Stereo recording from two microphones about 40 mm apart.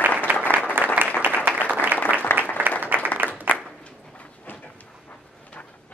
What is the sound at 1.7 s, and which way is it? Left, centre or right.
Applause, right.